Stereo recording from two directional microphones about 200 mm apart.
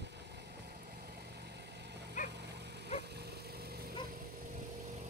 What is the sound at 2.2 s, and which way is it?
Dog, 60° right (ahead or behind).